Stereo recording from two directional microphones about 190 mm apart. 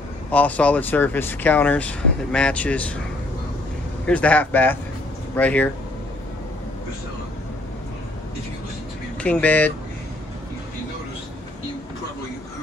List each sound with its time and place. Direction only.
0.3 s speech: 10° left (ahead or behind)
4.0 s speech: 5° left (ahead or behind)
9.2 s speech: 10° left (ahead or behind)